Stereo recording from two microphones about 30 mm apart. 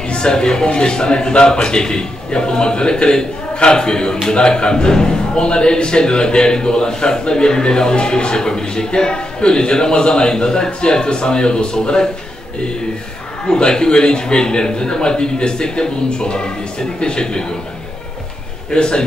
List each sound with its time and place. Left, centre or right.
0.1 s a man's voice: left
13.5 s a man's voice: left
18.7 s a man's voice: left